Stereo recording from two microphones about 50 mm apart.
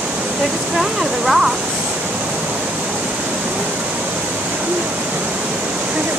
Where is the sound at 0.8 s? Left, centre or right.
Centre.